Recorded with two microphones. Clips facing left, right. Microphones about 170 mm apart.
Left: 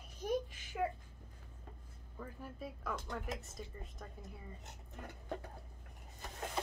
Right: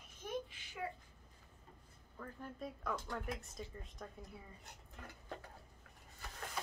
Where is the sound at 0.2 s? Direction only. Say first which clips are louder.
Left 6 dB; 40° left (ahead or behind).